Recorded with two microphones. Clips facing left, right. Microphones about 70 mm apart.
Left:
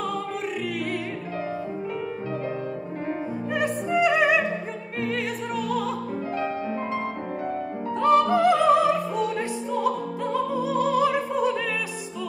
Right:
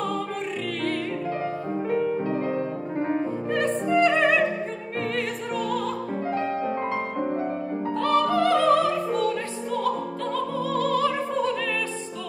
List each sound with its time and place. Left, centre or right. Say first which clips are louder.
3.5 s music: right 2 dB; centre
8.0 s music: left 3 dB; centre
9.8 s opera: left 1 dB; centre